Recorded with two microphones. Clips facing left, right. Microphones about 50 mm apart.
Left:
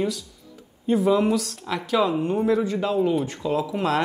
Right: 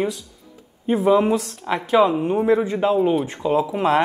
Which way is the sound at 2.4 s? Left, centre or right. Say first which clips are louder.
Right 6 dB; right.